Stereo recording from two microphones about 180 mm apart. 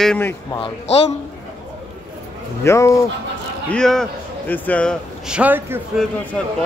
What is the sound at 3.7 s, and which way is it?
A man's voice, 5° left (ahead or behind).